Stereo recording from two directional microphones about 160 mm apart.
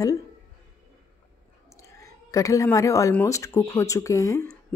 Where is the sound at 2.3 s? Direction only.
20° left (ahead or behind).